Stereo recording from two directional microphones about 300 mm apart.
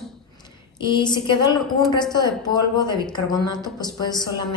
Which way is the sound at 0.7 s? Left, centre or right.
Centre.